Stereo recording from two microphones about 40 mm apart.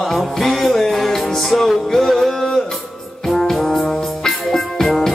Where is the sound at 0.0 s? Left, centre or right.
Centre.